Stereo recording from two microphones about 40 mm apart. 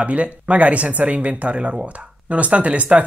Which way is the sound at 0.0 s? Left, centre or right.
Right.